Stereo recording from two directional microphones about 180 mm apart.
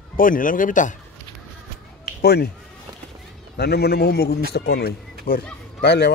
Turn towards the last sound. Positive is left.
turn(degrees=70)  # may be behind; listen again after turning